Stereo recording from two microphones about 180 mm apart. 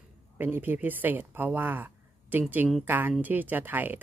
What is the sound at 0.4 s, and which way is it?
Speech, 10° right (ahead or behind).